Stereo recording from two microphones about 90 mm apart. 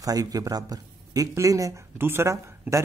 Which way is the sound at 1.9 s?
25° right (ahead or behind).